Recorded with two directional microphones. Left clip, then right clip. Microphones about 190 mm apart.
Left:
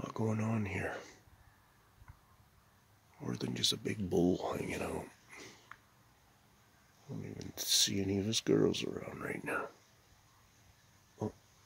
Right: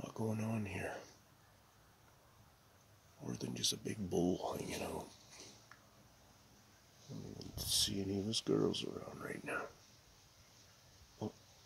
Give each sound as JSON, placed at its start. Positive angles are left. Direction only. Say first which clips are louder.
{"t": 0.0, "sound": "speech", "louder": "left 5 dB", "side_deg": 45}
{"t": 3.3, "sound": "speech", "louder": "left 5 dB", "side_deg": 40}
{"t": 5.7, "sound": "a sound", "louder": "left 6 dB", "side_deg": 5}
{"t": 7.3, "sound": "speech", "louder": "left 6 dB", "side_deg": 50}